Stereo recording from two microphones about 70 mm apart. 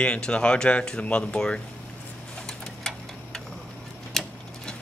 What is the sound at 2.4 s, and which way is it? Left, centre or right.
Tick-tock, centre.